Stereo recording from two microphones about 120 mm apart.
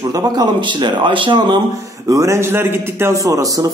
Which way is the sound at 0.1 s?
35° right (ahead or behind).